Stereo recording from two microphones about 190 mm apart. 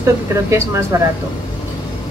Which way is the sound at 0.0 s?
15° right (ahead or behind).